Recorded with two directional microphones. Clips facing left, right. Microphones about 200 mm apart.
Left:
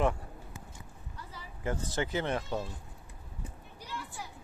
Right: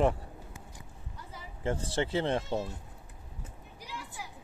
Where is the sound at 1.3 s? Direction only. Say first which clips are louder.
Right 2 dB; 25° right (ahead or behind).